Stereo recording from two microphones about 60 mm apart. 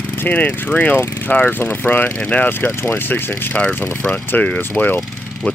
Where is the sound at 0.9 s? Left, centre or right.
Left.